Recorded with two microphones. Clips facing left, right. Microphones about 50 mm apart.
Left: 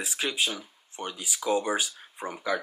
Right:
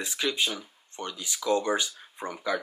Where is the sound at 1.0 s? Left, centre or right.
Left.